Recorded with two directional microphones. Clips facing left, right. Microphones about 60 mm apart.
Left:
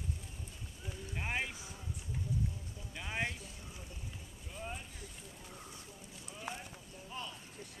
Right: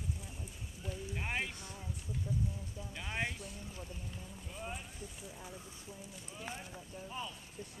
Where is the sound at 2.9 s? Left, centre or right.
Centre.